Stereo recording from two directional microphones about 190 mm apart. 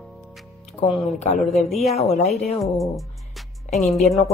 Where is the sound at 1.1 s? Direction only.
35° left (ahead or behind).